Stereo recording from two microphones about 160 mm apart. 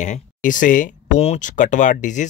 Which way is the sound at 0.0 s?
50° left (ahead or behind).